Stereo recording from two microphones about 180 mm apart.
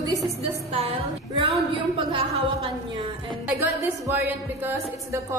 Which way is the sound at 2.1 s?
30° right (ahead or behind).